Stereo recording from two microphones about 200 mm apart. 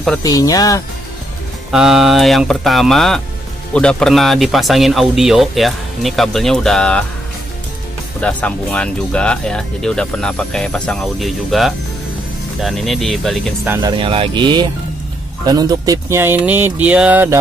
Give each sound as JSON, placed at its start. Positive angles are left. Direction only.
{"t": 0.2, "sound": "speech", "side_deg": 20}
{"t": 1.7, "sound": "speech", "side_deg": 0}
{"t": 8.2, "sound": "speech", "side_deg": 5}
{"t": 13.9, "sound": "speech", "side_deg": -25}